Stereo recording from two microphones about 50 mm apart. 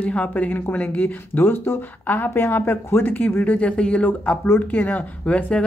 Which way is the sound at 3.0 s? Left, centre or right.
Left.